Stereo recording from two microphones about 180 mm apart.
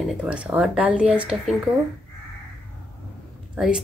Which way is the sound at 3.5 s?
5° right (ahead or behind).